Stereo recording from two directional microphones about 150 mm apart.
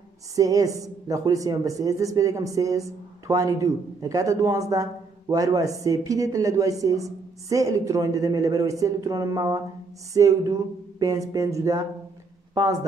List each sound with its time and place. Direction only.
0.4 s speech: 25° right (ahead or behind)